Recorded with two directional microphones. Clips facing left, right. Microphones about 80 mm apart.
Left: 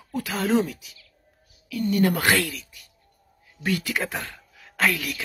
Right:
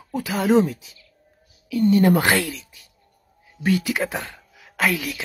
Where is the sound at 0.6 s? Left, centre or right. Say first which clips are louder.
Right 7 dB; right.